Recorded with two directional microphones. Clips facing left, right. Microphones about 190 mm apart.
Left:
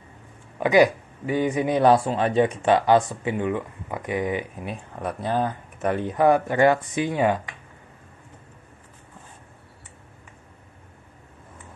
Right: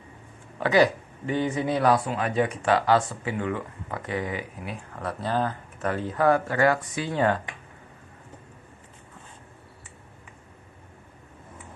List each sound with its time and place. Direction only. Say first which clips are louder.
0.6 s speech: left 3 dB; 15° left (ahead or behind)